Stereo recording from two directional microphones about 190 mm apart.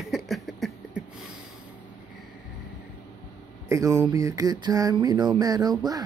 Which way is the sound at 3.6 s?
15° right (ahead or behind).